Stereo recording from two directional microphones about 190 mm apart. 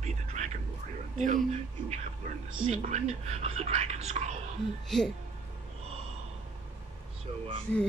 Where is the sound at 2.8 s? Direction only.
35° right (ahead or behind).